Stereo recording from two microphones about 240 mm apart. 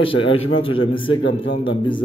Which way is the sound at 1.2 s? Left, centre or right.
Left.